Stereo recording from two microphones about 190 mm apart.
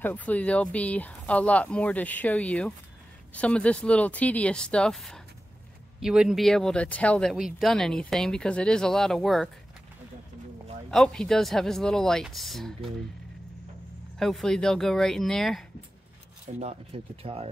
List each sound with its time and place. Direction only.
0.0 s speech: 10° left (ahead or behind)
10.9 s speech: 5° left (ahead or behind)
14.1 s speech: centre (ahead or behind)
16.5 s speech: 30° right (ahead or behind)